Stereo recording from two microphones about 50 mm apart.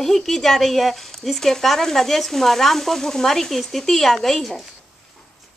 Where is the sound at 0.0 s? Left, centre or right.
Centre.